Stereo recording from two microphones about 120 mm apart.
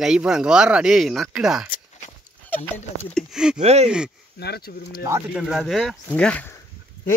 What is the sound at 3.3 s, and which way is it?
Speech, 5° right (ahead or behind).